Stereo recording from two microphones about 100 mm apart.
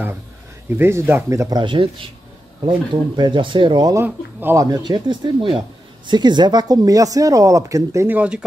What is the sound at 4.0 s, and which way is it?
Speech, 20° right (ahead or behind).